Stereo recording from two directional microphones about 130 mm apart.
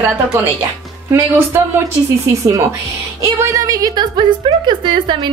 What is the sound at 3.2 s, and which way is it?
A woman's voice, 20° right (ahead or behind).